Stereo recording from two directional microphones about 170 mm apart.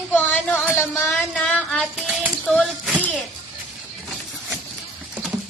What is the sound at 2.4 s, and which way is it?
Speech, 5° left (ahead or behind).